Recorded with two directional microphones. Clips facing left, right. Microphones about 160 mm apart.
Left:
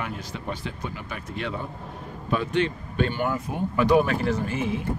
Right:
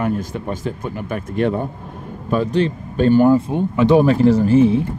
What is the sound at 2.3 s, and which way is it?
Speech, 35° right (ahead or behind).